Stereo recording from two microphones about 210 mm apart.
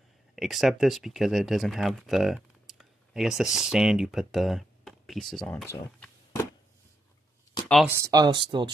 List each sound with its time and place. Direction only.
0.4 s speech: centre (ahead or behind)
5.9 s a sound: 10° left (ahead or behind)
7.6 s speech: centre (ahead or behind)
7.9 s speech: 15° right (ahead or behind)